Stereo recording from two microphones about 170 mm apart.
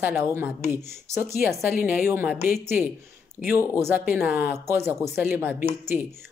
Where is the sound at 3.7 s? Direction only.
10° right (ahead or behind).